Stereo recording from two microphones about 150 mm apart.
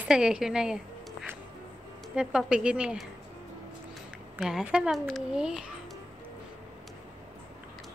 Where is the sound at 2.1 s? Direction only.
5° right (ahead or behind).